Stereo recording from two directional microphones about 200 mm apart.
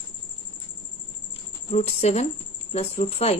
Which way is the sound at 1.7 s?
35° left (ahead or behind).